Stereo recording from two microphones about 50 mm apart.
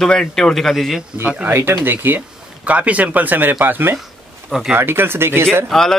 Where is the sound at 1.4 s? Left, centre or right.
Right.